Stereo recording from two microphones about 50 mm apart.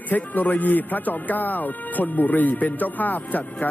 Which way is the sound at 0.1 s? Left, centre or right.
Left.